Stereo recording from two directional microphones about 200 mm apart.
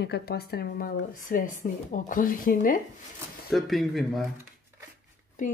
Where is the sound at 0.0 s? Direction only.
55° left (ahead or behind).